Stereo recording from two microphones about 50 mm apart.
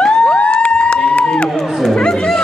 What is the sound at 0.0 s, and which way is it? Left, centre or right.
Crowd, left.